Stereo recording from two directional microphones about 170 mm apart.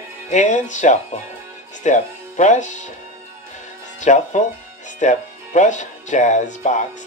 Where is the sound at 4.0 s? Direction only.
45° left (ahead or behind).